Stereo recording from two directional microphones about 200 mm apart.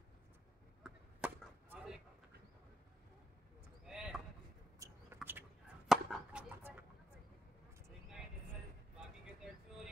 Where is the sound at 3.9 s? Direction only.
5° right (ahead or behind).